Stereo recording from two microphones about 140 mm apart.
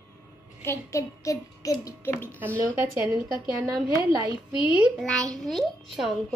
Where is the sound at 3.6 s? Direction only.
25° right (ahead or behind).